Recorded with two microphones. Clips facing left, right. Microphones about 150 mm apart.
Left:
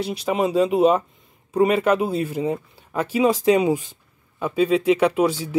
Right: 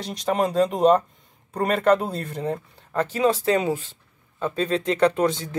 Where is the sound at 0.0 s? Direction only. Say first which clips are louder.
Left 2 dB; 5° left (ahead or behind).